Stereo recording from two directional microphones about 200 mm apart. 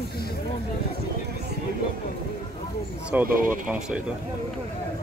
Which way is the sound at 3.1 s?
10° right (ahead or behind).